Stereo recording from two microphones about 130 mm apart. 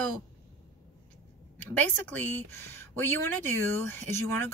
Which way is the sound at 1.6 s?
15° left (ahead or behind).